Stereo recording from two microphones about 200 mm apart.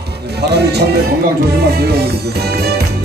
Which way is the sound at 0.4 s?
55° right (ahead or behind).